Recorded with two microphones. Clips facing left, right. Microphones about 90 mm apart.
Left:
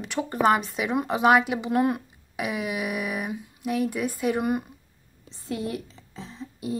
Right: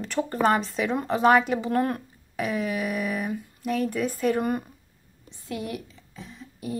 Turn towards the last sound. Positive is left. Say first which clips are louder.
# left 2 dB
turn(degrees=25)  # may be behind; listen again after turning